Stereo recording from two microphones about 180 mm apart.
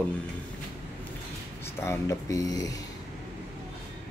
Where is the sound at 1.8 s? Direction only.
15° left (ahead or behind).